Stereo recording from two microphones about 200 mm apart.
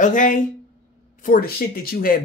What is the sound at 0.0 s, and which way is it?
Speech, 40° left (ahead or behind).